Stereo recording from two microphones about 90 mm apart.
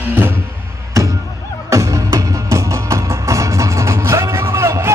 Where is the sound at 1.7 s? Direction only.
35° right (ahead or behind).